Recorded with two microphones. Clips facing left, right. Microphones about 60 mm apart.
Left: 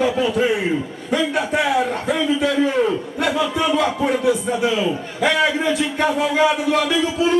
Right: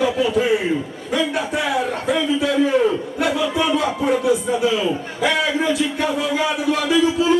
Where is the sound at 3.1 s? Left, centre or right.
Left.